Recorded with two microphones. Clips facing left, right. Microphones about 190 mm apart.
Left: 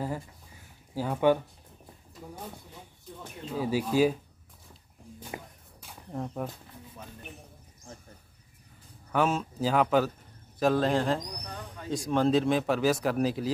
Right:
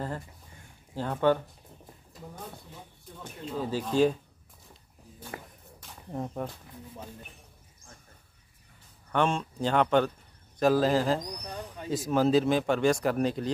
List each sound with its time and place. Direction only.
0.9 s speech: 10° left (ahead or behind)
3.5 s speech: 10° left (ahead or behind)
5.3 s music: 20° left (ahead or behind)
6.1 s speech: 5° right (ahead or behind)
9.1 s speech: 5° left (ahead or behind)